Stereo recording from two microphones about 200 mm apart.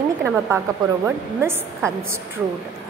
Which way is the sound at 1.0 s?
10° right (ahead or behind).